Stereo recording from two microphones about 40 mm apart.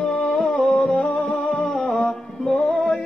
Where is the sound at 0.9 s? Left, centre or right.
Left.